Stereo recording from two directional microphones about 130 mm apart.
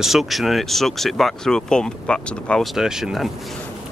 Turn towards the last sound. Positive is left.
turn(degrees=0)  # may be behind; listen again after turning